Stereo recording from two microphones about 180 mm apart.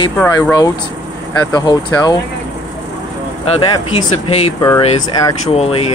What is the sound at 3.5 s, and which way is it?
Speech, 30° left (ahead or behind).